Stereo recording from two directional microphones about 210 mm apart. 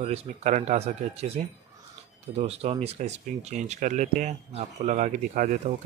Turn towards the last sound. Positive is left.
turn(degrees=-40)  # may be behind; listen again after turning